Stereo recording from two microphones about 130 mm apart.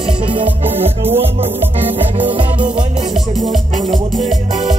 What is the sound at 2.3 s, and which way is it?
Music, 40° right (ahead or behind).